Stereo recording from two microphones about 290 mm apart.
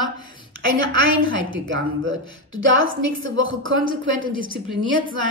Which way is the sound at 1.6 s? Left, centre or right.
Right.